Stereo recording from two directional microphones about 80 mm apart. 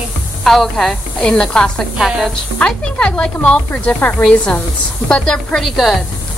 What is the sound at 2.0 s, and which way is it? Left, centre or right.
Speech, centre.